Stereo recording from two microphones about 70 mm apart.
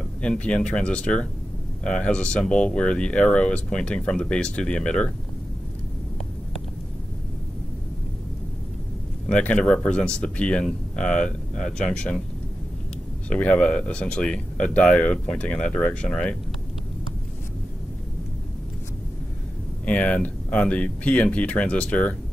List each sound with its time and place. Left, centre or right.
0.2 s speech: centre
9.3 s speech: centre
13.3 s speech: centre
19.8 s speech: centre